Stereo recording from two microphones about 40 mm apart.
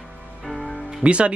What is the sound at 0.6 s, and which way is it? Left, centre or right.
Music, left.